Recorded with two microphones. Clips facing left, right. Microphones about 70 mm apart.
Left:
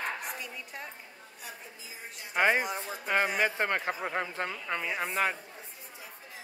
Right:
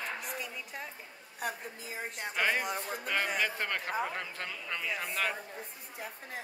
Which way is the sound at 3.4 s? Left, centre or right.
Left.